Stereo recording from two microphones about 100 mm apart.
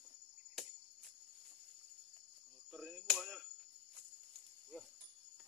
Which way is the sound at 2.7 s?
Centre (ahead or behind).